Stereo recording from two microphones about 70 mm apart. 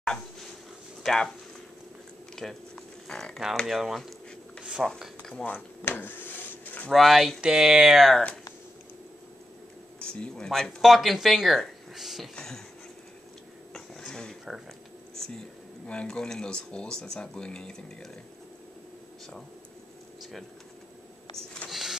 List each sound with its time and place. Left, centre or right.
0.0 s dog: centre
1.0 s speech: centre
2.3 s a sound: centre
3.6 s speech: centre
4.8 s speech: centre
5.3 s speech: left
5.9 s a sound: left
6.9 s speech: centre
9.9 s speech: centre
12.4 s speech: centre
13.7 s a sound: centre
15.9 s speech: centre
21.6 s vehicle: centre